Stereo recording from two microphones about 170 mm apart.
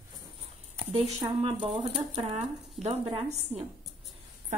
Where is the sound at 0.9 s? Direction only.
40° right (ahead or behind).